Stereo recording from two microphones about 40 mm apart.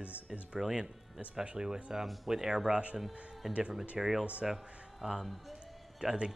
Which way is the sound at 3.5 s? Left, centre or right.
Right.